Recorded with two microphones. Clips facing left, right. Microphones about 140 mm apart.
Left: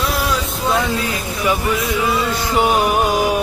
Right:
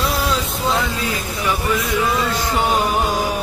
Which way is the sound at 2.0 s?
10° left (ahead or behind).